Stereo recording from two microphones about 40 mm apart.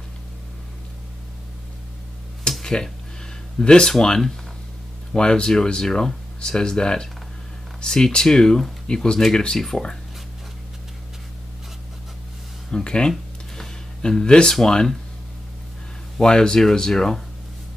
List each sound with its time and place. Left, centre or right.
2.6 s a sound: centre
3.6 s speech: left
5.1 s speech: centre
12.7 s speech: left
13.6 s a sound: centre
14.5 s speech: centre
16.2 s speech: centre